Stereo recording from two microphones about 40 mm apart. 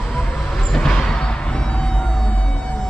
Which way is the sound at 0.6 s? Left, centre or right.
Centre.